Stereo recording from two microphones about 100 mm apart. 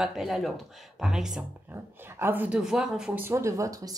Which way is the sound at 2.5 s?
5° right (ahead or behind).